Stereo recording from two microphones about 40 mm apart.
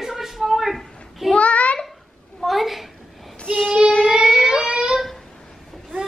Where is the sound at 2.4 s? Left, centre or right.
Centre.